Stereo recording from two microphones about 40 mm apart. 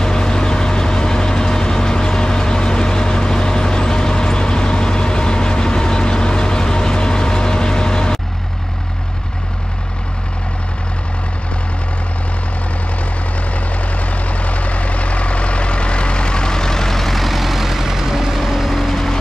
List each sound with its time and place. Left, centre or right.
0.0 s vehicle: centre
13.5 s vehicle: left; by 18.4 s centre
18.7 s vehicle: centre